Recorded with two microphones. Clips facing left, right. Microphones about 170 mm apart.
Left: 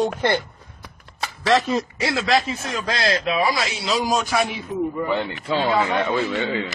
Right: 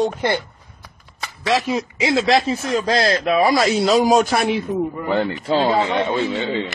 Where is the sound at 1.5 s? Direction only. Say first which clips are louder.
Even; 10° right (ahead or behind).